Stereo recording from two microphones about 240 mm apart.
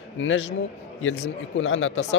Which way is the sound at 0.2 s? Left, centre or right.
Left.